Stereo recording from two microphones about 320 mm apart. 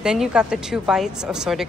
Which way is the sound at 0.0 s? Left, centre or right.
Centre.